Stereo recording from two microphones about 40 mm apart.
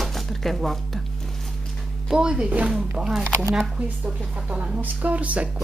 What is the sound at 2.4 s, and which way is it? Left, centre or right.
Speech, right.